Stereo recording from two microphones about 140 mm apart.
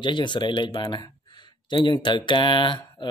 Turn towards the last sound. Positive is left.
turn(degrees=35)  # may be behind; listen again after turning